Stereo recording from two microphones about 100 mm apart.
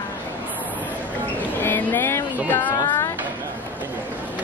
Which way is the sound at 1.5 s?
20° left (ahead or behind).